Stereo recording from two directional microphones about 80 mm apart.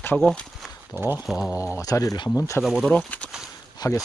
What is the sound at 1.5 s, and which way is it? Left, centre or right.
Speech, left.